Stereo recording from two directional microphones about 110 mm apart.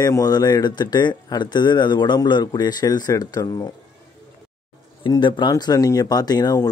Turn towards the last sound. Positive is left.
turn(degrees=35)  # may be behind; listen again after turning